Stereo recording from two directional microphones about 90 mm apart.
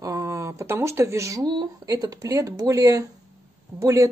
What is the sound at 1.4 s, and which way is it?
Speech, 50° right (ahead or behind).